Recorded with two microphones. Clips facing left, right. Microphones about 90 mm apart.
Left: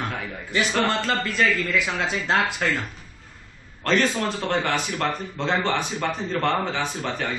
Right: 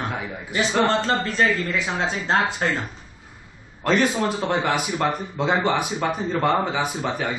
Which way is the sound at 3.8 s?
10° right (ahead or behind).